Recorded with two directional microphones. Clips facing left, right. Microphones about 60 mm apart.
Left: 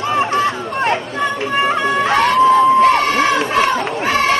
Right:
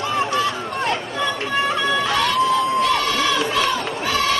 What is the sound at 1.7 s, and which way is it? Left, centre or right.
Music, left.